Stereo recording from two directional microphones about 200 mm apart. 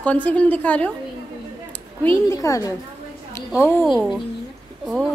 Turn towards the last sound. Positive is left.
turn(degrees=0)  # may be behind; listen again after turning